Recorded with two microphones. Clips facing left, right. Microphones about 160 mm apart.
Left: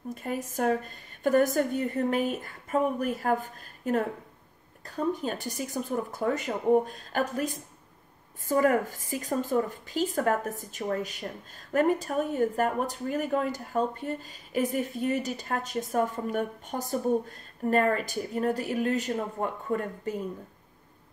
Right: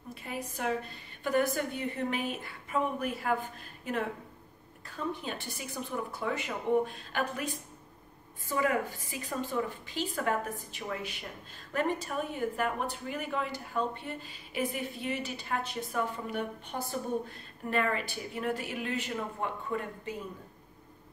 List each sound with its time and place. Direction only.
0.1 s a woman's voice: 45° left (ahead or behind)